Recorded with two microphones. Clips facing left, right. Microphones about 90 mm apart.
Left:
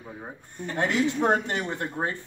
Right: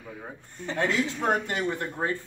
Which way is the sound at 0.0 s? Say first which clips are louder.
Left 1 dB; 30° left (ahead or behind).